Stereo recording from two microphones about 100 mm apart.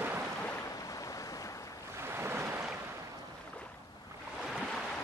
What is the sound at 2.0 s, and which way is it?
Waves, 20° right (ahead or behind).